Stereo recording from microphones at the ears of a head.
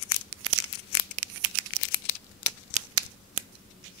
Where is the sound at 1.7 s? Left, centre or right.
Left.